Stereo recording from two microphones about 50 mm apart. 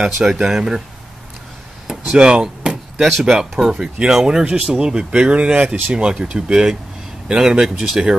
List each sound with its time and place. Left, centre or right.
0.0 s speech: centre
1.9 s a sound: centre
3.0 s speech: centre
3.3 s speech: centre
4.5 s speech: right